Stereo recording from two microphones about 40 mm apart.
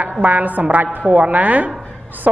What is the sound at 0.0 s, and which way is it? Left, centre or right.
A man's voice, right.